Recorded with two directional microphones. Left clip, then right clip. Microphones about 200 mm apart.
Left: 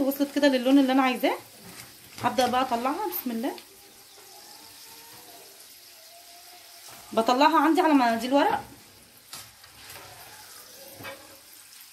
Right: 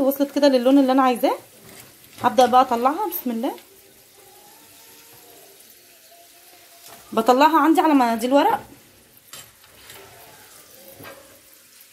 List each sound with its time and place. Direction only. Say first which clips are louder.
0.0 s speech: right 6 dB; 25° right (ahead or behind)
7.2 s a woman's voice: right 5 dB; 35° right (ahead or behind)